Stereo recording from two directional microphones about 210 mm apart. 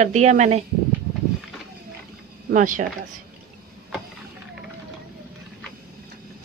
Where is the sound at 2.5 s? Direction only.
40° right (ahead or behind).